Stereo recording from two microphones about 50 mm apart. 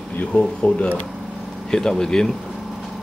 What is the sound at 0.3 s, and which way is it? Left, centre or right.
Speech, centre.